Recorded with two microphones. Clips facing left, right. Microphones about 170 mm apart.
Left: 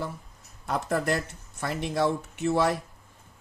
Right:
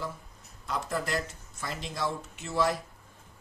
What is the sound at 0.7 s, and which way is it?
Speech, 55° left (ahead or behind).